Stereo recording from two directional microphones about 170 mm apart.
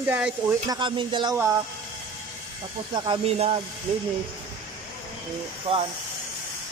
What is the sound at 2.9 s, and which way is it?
Speech, 30° right (ahead or behind).